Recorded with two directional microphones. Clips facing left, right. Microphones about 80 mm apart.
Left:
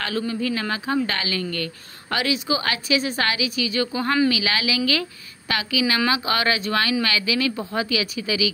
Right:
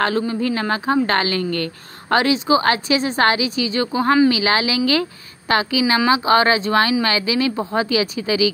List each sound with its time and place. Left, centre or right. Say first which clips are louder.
0.0 s a woman's voice: right 6 dB; right